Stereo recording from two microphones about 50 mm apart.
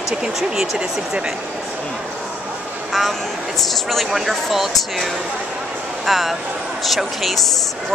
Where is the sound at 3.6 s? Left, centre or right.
Centre.